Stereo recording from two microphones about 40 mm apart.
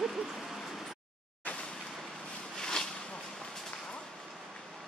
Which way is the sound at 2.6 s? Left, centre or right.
Centre.